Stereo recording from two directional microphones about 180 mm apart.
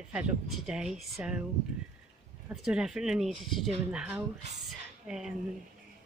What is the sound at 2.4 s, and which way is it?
A woman's voice, 5° right (ahead or behind).